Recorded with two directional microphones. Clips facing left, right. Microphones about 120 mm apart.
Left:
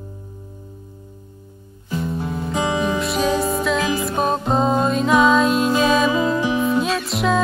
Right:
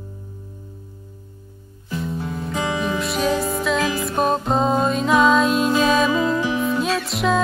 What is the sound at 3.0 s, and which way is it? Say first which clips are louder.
Music: left 1 dB; centre (ahead or behind).